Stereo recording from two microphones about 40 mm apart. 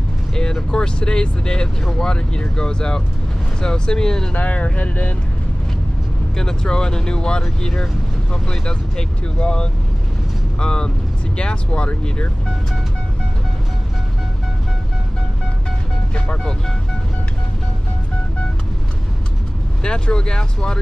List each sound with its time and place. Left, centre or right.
0.3 s vehicle: centre
0.7 s speech: left
4.3 s speech: left
6.3 s speech: centre
19.8 s speech: left